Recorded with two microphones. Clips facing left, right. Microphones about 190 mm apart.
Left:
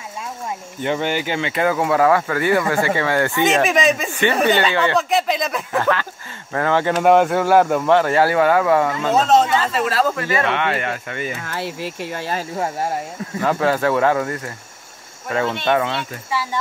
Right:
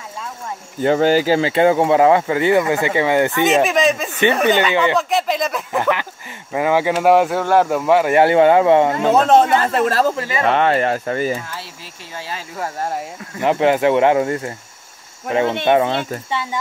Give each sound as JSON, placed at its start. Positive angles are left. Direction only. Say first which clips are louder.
{"t": 0.8, "sound": "speech", "louder": "right 7 dB", "side_deg": -40}
{"t": 3.4, "sound": "speech", "louder": "left 1 dB", "side_deg": 0}
{"t": 4.2, "sound": "speech", "louder": "right 3 dB", "side_deg": -15}
{"t": 4.9, "sound": "speech", "louder": "even", "side_deg": 0}
{"t": 5.7, "sound": "speech", "louder": "left 2 dB", "side_deg": -15}
{"t": 8.2, "sound": "speech", "louder": "right 4 dB", "side_deg": -25}
{"t": 9.1, "sound": "speech", "louder": "right 2 dB", "side_deg": -55}
{"t": 10.0, "sound": "speech", "louder": "right 1 dB", "side_deg": -25}
{"t": 10.4, "sound": "speech", "louder": "right 10 dB", "side_deg": -35}
{"t": 11.4, "sound": "speech", "louder": "left 8 dB", "side_deg": 60}
{"t": 13.4, "sound": "speech", "louder": "right 3 dB", "side_deg": -20}
{"t": 15.6, "sound": "speech", "louder": "right 4 dB", "side_deg": -20}
{"t": 15.9, "sound": "speech", "louder": "right 5 dB", "side_deg": -50}